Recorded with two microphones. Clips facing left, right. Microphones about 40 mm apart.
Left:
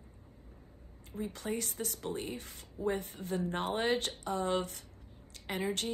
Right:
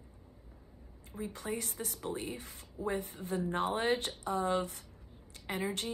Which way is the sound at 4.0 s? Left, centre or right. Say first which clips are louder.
Right 1 dB; left.